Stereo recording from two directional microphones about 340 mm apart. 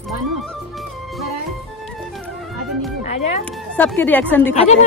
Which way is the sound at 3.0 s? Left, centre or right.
Centre.